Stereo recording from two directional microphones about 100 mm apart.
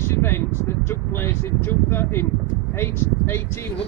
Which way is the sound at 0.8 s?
25° left (ahead or behind).